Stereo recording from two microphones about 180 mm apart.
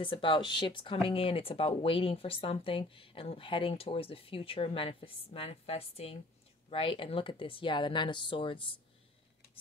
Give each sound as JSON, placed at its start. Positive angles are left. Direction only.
{"t": 0.0, "sound": "speech", "side_deg": 30}